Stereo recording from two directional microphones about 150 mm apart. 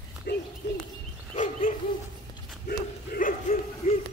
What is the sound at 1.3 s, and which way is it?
Dog, 60° left (ahead or behind).